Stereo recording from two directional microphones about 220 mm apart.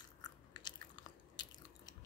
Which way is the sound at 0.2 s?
20° left (ahead or behind).